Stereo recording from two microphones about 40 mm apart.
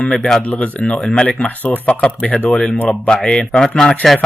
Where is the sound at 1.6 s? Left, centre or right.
Left.